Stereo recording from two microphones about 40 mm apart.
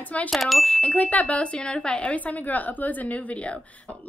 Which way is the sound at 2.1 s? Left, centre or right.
Left.